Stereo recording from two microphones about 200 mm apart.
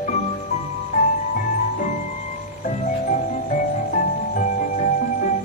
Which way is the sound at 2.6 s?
40° left (ahead or behind).